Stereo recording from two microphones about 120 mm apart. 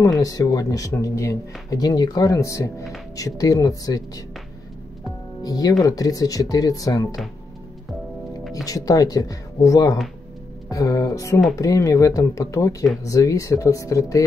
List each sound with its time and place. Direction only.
0.2 s speech: 30° left (ahead or behind)
5.4 s speech: 30° left (ahead or behind)
8.6 s speech: 30° left (ahead or behind)